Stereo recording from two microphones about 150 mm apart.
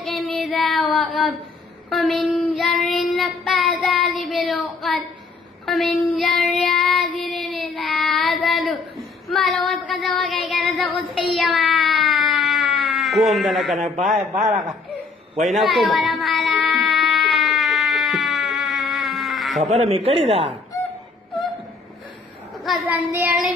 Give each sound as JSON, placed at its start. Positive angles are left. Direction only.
{"t": 0.0, "sound": "child singing", "side_deg": 0}
{"t": 5.7, "sound": "child singing", "side_deg": 0}
{"t": 11.2, "sound": "a sound", "side_deg": 0}
{"t": 13.7, "sound": "a man's voice", "side_deg": -60}
{"t": 15.5, "sound": "a sound", "side_deg": 0}
{"t": 19.6, "sound": "speech", "side_deg": -45}
{"t": 22.8, "sound": "child singing", "side_deg": -10}